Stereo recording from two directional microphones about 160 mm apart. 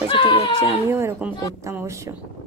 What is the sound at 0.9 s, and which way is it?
A woman's voice, 15° right (ahead or behind).